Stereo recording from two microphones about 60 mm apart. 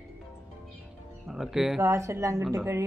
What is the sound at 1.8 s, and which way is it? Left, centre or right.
Speech, right.